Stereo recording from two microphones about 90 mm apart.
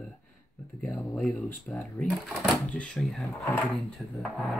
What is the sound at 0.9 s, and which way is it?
Speech, 5° left (ahead or behind).